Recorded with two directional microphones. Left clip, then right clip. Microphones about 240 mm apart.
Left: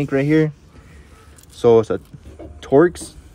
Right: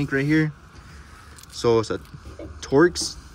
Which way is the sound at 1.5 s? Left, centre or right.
Centre.